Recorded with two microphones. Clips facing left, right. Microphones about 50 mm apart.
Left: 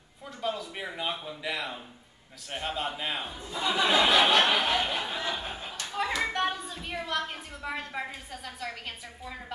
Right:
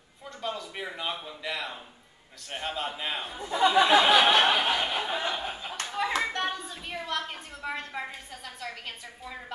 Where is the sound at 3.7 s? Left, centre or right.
Right.